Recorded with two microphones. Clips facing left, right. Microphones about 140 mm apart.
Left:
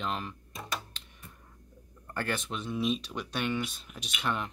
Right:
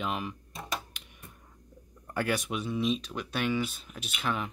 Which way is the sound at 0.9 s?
15° right (ahead or behind).